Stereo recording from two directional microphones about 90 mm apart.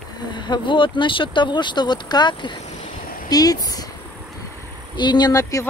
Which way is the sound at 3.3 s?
45° left (ahead or behind).